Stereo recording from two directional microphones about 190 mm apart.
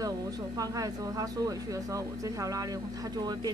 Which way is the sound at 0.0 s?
20° right (ahead or behind).